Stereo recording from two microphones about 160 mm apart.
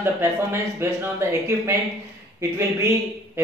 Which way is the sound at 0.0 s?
15° right (ahead or behind).